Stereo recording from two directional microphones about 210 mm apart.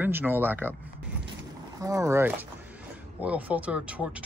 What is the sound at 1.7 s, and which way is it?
Speech, 15° right (ahead or behind).